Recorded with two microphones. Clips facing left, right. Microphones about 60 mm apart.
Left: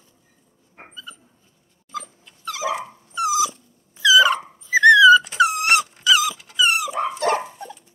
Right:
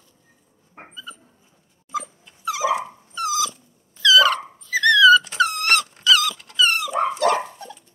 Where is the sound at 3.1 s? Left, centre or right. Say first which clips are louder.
Left 3 dB; centre.